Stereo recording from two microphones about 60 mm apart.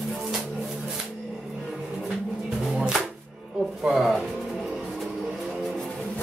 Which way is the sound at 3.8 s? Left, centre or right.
Centre.